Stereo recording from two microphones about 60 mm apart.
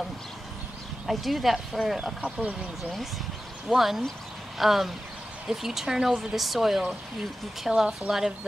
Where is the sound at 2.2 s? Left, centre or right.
Centre.